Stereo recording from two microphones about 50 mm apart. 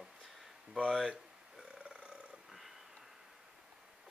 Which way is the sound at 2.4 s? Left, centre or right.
Centre.